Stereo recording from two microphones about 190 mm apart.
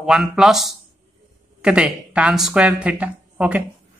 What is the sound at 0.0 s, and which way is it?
Speech, 5° right (ahead or behind).